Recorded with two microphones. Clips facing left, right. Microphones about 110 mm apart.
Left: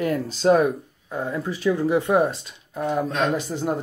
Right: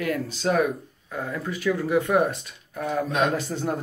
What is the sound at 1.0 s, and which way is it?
A man's voice, 25° left (ahead or behind).